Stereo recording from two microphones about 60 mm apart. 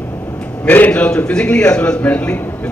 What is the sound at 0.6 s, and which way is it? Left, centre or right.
Speech, left.